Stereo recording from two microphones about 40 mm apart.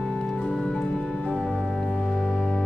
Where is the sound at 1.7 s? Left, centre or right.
Left.